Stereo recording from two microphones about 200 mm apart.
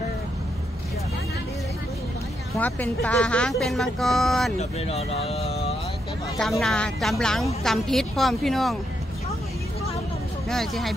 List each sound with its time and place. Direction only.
2.5 s speech: 5° left (ahead or behind)
4.6 s speech: 30° left (ahead or behind)
6.6 s speech: 5° left (ahead or behind)
10.5 s speech: centre (ahead or behind)